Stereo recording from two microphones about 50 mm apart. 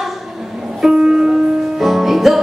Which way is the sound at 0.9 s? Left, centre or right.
Centre.